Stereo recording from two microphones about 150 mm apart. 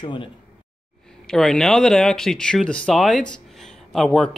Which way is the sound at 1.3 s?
5° left (ahead or behind).